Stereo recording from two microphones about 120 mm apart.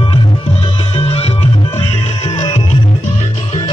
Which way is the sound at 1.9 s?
75° left (ahead or behind).